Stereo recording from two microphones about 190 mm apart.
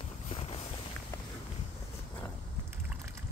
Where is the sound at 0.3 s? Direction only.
30° left (ahead or behind).